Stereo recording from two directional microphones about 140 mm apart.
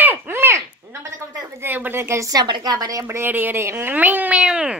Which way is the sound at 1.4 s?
15° right (ahead or behind).